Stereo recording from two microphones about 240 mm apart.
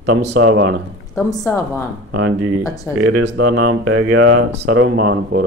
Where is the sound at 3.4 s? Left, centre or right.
Right.